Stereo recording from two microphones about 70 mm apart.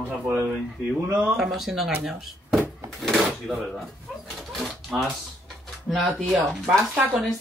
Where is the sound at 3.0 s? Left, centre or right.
Centre.